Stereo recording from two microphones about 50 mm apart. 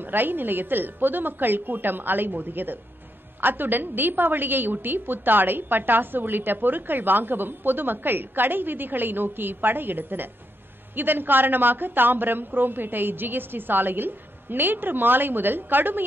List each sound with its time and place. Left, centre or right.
0.0 s a woman's voice: right